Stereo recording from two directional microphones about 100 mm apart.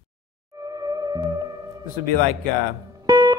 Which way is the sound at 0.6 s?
35° right (ahead or behind).